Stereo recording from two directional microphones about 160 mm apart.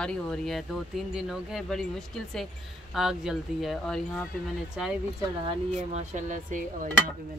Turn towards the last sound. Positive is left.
turn(degrees=-55)  # may be behind; listen again after turning